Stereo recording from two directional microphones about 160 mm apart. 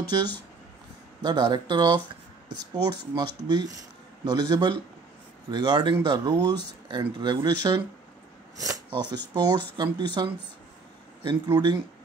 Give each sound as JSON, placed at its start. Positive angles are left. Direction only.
{"t": 1.2, "sound": "speech", "side_deg": -25}